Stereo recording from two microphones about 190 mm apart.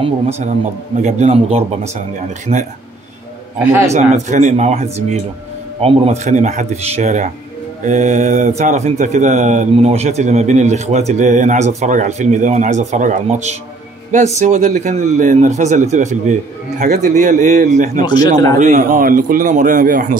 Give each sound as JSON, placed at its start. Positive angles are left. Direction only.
{"t": 0.0, "sound": "speech", "side_deg": -35}
{"t": 3.5, "sound": "a man's voice", "side_deg": -10}
{"t": 3.9, "sound": "a man's voice", "side_deg": -40}
{"t": 18.0, "sound": "a man's voice", "side_deg": 20}
{"t": 18.6, "sound": "a man's voice", "side_deg": -45}